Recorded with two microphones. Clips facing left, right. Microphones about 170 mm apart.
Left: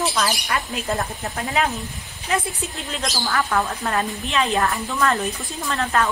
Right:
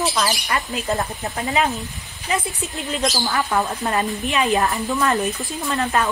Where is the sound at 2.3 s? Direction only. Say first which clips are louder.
Even; centre (ahead or behind).